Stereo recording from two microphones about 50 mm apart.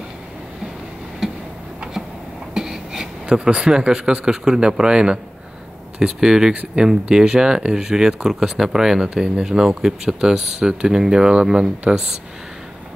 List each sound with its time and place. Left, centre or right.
1.2 s tick-tock: centre
2.5 s a sound: centre
3.3 s speech: right